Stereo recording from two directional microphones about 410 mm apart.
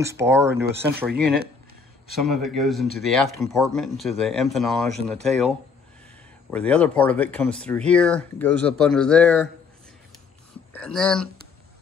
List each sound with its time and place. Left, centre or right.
0.0 s speech: centre
1.1 s speech: right
2.1 s speech: centre
6.5 s speech: centre
10.7 s speech: centre